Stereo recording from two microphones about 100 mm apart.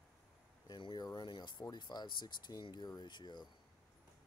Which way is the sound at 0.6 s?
50° left (ahead or behind).